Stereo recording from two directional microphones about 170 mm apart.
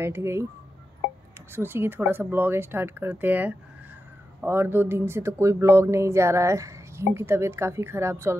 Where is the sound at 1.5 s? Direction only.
15° right (ahead or behind).